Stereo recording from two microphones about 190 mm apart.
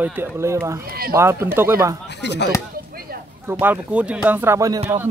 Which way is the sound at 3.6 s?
10° right (ahead or behind).